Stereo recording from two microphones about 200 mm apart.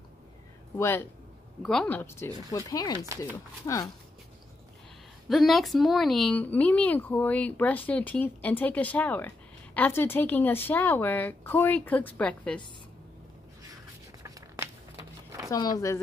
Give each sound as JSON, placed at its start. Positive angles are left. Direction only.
{"t": 0.7, "sound": "speech", "side_deg": 10}
{"t": 5.3, "sound": "speech", "side_deg": 0}